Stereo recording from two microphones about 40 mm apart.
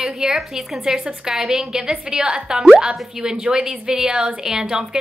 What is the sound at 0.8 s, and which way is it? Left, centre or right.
Speech, centre.